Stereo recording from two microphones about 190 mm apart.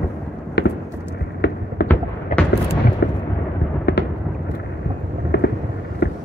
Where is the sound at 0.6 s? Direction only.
60° left (ahead or behind).